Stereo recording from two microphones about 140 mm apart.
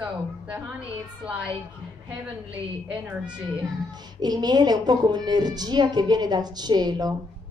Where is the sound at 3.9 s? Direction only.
30° right (ahead or behind).